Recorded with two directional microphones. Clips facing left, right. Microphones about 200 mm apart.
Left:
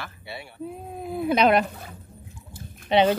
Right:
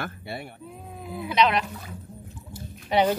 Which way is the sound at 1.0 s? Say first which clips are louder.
Left 3 dB; 50° left (ahead or behind).